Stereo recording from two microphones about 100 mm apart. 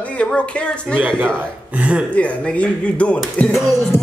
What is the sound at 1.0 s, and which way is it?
A man's voice, 15° right (ahead or behind).